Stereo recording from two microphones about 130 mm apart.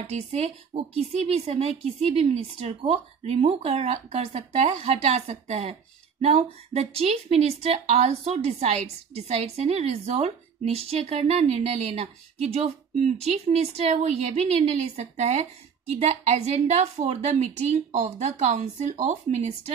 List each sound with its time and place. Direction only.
0.1 s a woman's voice: 55° right (ahead or behind)